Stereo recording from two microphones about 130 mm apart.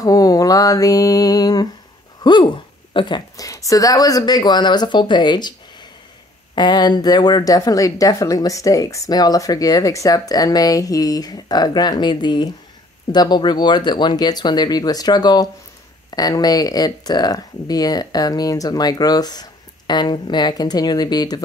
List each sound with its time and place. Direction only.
0.0 s a woman's voice: 30° left (ahead or behind)